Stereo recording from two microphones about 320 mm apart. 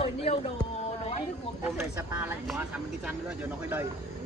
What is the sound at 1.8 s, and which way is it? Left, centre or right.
Speech, centre.